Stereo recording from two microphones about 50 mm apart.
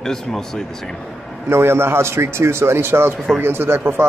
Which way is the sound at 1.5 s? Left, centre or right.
Right.